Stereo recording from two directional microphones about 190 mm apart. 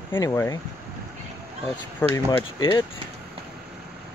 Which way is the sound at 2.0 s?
10° left (ahead or behind).